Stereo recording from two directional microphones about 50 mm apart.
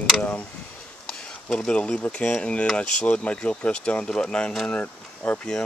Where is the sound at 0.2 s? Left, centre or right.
Left.